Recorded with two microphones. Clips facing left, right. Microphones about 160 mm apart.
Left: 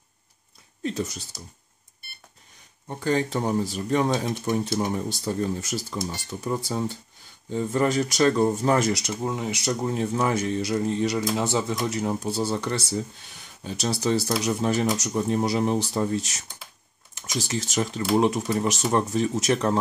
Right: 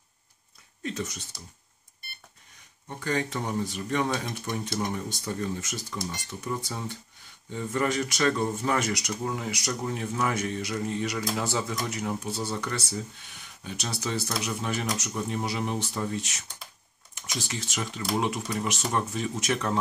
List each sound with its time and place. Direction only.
0.8 s speech: 30° left (ahead or behind)
2.9 s speech: 30° left (ahead or behind)